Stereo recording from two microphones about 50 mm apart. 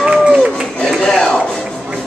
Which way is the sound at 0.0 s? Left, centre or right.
Centre.